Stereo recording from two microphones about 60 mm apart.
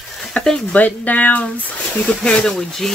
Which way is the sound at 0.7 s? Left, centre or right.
Left.